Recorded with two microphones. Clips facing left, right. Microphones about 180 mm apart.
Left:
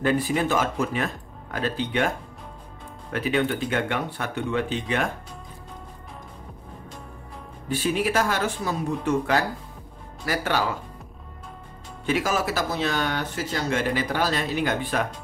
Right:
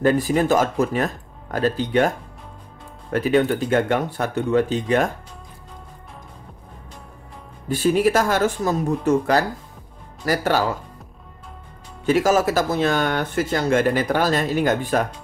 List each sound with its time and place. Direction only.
0.0 s speech: 45° right (ahead or behind)
7.7 s speech: 40° right (ahead or behind)
12.1 s speech: 45° right (ahead or behind)